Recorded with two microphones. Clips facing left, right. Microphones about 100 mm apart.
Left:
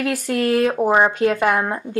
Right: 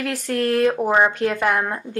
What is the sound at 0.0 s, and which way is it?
Speech, 5° left (ahead or behind).